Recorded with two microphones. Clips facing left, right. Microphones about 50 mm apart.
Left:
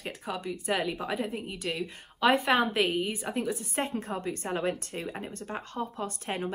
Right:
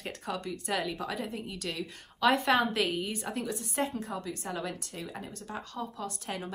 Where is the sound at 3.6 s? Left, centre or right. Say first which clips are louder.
Left 1 dB; left.